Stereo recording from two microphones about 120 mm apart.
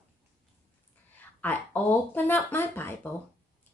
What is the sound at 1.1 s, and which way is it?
Speech, 15° left (ahead or behind).